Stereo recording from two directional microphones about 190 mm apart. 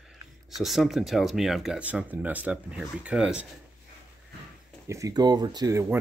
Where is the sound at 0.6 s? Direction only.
Centre (ahead or behind).